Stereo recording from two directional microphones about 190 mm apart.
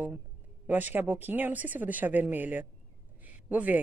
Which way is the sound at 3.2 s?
10° right (ahead or behind).